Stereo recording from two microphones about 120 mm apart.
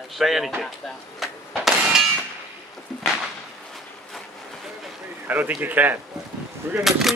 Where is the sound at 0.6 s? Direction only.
Centre (ahead or behind).